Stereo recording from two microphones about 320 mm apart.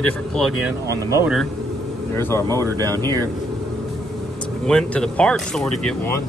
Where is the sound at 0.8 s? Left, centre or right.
Centre.